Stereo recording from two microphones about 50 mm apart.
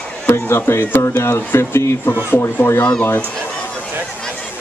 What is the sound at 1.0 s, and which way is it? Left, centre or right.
Speech, left.